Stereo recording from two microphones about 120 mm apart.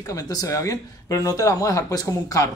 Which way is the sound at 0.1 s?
30° left (ahead or behind).